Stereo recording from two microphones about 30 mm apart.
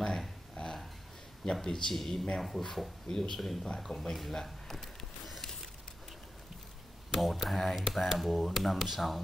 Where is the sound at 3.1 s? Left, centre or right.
Left.